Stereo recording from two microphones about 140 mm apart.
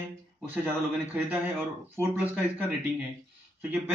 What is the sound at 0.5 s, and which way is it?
A man's voice, 10° right (ahead or behind).